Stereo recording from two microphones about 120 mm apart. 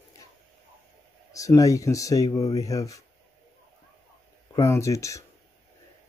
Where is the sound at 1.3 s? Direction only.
25° left (ahead or behind).